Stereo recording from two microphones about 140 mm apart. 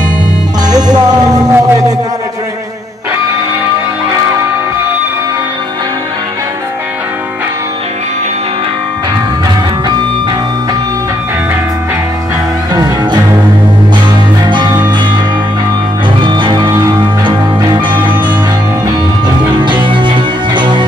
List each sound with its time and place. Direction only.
0.7 s music: 30° right (ahead or behind)
12.7 s music: 30° right (ahead or behind)
14.4 s music: 30° right (ahead or behind)
16.2 s music: 35° right (ahead or behind)
19.2 s music: 35° right (ahead or behind)